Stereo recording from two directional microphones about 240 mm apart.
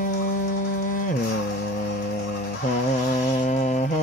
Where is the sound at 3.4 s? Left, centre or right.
Left.